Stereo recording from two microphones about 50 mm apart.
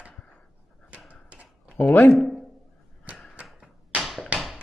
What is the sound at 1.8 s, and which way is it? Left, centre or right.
Speech, left.